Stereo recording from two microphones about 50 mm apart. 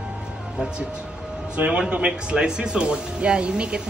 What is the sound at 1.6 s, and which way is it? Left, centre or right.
Speech, right.